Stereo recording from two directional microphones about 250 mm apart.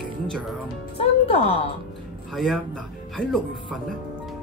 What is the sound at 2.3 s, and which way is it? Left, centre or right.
Speech, centre.